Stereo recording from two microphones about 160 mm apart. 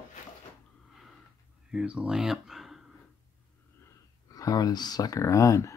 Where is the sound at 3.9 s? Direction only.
20° left (ahead or behind).